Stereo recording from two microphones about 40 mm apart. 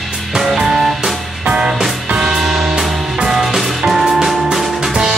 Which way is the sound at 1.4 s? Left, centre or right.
Right.